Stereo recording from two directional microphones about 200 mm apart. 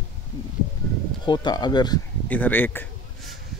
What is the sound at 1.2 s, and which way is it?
Speech, 20° left (ahead or behind).